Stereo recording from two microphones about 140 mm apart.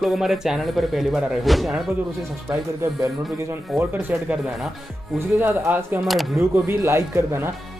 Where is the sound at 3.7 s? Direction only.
Centre (ahead or behind).